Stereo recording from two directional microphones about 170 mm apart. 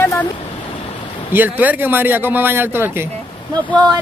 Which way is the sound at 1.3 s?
10° right (ahead or behind).